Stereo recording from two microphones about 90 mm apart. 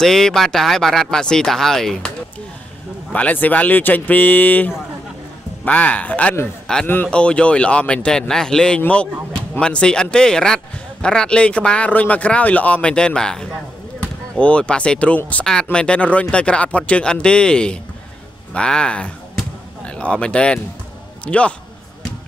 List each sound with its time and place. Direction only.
0.0 s speech: 5° left (ahead or behind)
3.1 s speech: 15° left (ahead or behind)